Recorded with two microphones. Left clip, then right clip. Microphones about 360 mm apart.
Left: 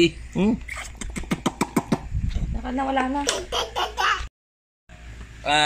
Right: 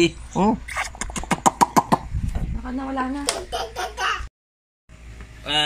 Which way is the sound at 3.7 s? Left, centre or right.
Centre.